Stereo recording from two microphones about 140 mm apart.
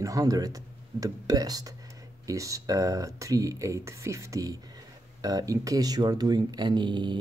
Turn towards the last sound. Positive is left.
turn(degrees=-35)  # may be behind; listen again after turning